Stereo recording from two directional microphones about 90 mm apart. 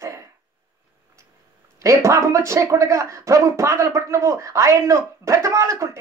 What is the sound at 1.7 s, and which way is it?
Speech, 35° right (ahead or behind).